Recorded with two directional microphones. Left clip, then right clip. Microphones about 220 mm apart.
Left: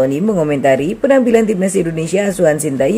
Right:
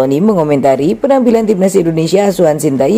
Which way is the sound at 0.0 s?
15° right (ahead or behind).